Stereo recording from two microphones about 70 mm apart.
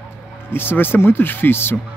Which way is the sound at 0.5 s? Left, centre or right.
Left.